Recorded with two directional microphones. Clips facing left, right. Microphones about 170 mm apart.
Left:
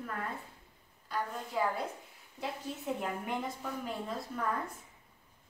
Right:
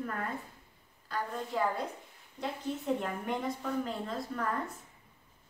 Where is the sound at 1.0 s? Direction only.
Centre (ahead or behind).